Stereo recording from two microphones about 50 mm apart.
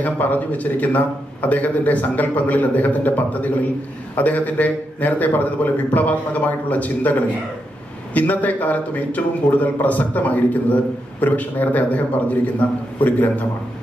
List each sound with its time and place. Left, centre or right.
0.0 s a man's voice: left